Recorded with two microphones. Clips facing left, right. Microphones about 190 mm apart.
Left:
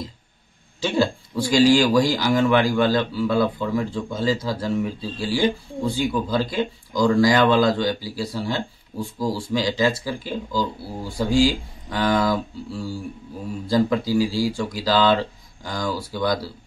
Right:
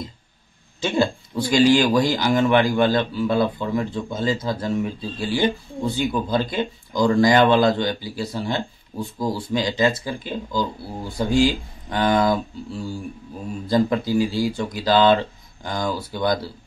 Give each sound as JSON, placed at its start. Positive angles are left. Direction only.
{"t": 0.7, "sound": "a man's voice", "side_deg": -20}